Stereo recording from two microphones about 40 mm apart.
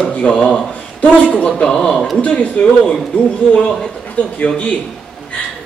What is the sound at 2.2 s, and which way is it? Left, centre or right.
Speech, left.